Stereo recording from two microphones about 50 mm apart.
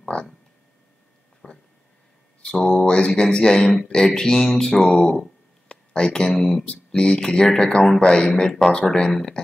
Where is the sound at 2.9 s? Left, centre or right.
Centre.